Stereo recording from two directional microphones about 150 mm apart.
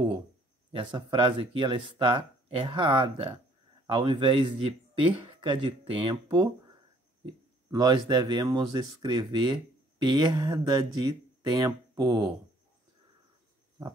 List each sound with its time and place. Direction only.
0.7 s speech: 35° right (ahead or behind)
7.7 s speech: 25° right (ahead or behind)
13.8 s pig: 25° right (ahead or behind)